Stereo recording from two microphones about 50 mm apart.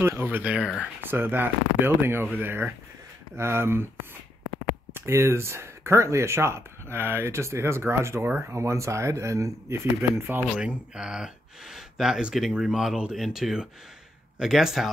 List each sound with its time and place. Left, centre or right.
0.4 s speech: right
1.0 s speech: right
4.9 s speech: right
10.6 s speech: centre